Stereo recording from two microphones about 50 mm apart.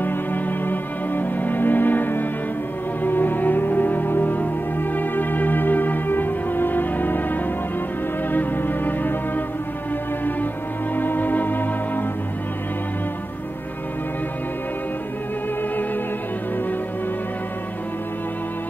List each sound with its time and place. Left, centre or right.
0.0 s music: left
11.0 s music: left